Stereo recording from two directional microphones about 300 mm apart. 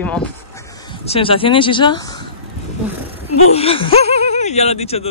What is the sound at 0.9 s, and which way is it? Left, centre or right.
Speech, centre.